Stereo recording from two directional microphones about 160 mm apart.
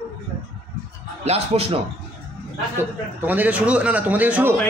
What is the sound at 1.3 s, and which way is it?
Speech, 40° right (ahead or behind).